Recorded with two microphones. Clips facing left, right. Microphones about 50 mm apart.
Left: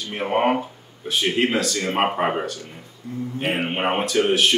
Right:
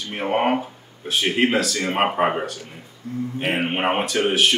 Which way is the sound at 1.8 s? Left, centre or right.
Centre.